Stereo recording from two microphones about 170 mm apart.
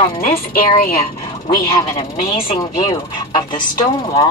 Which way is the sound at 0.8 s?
60° left (ahead or behind).